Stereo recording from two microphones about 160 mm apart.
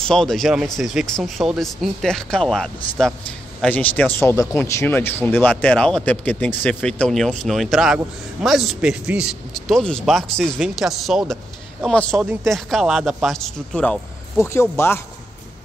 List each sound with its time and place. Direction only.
0.0 s speech: 5° left (ahead or behind)
14.4 s speech: 15° left (ahead or behind)